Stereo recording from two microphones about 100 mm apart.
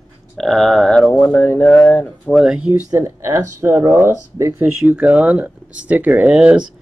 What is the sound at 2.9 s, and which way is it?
Speech, 30° right (ahead or behind).